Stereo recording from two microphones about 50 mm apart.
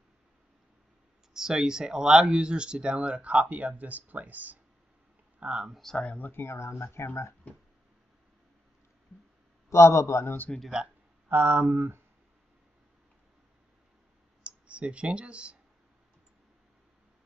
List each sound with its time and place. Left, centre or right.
1.3 s speech: centre; by 4.6 s right
5.4 s speech: right
5.8 s speech: centre
6.0 s speech: left
6.3 s speech: left
9.7 s a man's voice: left
10.2 s speech: left
11.2 s speech: right
14.4 s speech: right